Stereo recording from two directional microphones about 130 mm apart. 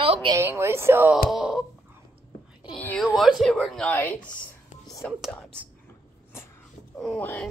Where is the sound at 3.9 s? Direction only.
15° left (ahead or behind).